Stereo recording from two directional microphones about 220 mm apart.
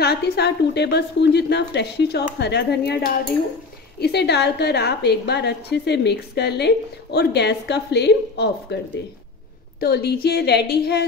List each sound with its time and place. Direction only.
0.0 s a woman's voice: 50° left (ahead or behind)
9.8 s a woman's voice: 45° left (ahead or behind)